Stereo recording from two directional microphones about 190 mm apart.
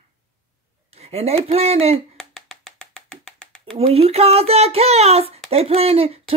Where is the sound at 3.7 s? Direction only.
30° right (ahead or behind).